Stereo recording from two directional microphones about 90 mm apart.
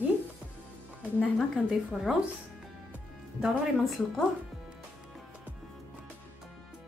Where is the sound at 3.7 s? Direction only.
Centre (ahead or behind).